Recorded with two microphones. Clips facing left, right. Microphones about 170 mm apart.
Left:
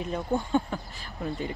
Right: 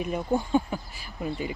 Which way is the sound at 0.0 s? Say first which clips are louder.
Right 2 dB; 15° right (ahead or behind).